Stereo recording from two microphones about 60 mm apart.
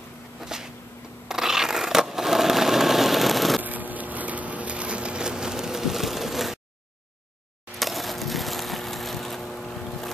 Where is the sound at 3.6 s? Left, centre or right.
Right; by 6.6 s centre.